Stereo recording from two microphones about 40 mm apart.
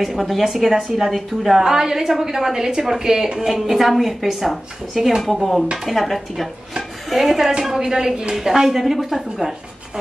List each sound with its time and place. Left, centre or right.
0.0 s a woman's voice: centre
1.6 s a woman's voice: centre
5.2 s a woman's voice: centre